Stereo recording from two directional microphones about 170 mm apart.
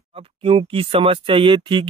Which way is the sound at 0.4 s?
30° right (ahead or behind).